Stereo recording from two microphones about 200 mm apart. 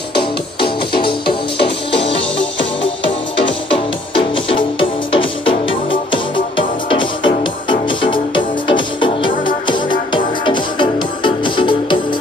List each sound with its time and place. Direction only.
1.2 s music: 55° left (ahead or behind)
2.8 s music: 25° left (ahead or behind)